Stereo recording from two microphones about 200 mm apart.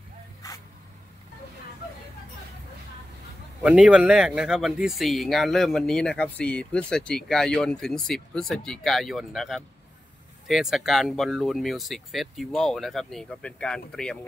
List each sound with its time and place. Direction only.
0.4 s spray: 15° left (ahead or behind)
3.6 s speech: 5° right (ahead or behind)